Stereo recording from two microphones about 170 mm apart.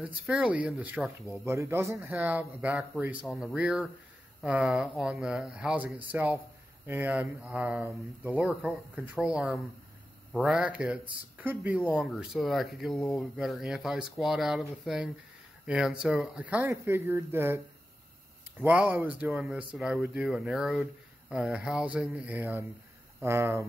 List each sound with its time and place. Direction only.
0.0 s speech: 5° right (ahead or behind)
1.4 s speech: 15° right (ahead or behind)
18.6 s speech: 10° right (ahead or behind)